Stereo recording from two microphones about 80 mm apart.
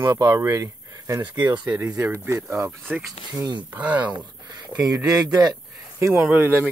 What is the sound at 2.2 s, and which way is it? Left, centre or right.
Speech, right.